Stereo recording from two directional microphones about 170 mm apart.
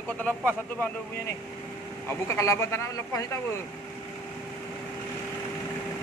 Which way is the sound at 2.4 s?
15° left (ahead or behind).